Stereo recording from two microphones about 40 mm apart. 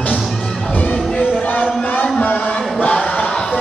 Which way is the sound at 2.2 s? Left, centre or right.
Left.